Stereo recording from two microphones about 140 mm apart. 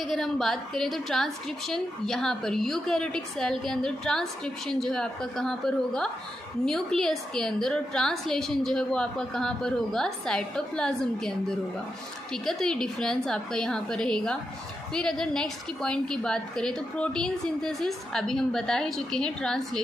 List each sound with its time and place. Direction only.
0.0 s a woman's voice: centre (ahead or behind)